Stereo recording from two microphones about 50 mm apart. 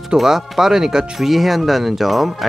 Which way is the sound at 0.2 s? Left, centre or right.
Centre.